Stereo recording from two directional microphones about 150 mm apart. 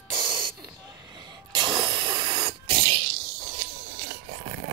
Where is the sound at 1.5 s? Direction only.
30° right (ahead or behind).